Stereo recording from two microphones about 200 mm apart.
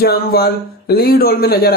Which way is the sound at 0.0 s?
50° left (ahead or behind).